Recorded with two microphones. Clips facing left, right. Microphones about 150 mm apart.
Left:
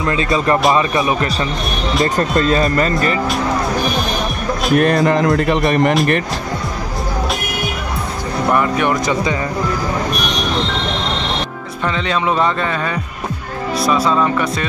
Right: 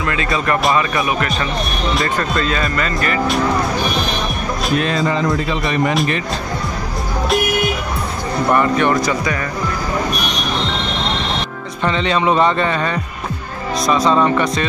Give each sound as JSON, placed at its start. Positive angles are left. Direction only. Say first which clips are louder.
{"t": 0.0, "sound": "speech", "louder": "left 3 dB", "side_deg": 30}
{"t": 2.1, "sound": "speech", "louder": "left 4 dB", "side_deg": 40}
{"t": 4.7, "sound": "speech", "louder": "left 5 dB", "side_deg": 55}
{"t": 8.5, "sound": "speech", "louder": "right 2 dB", "side_deg": 10}
{"t": 11.8, "sound": "speech", "louder": "right 2 dB", "side_deg": 5}